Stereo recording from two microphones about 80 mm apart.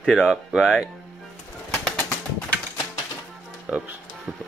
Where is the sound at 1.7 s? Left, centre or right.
Centre.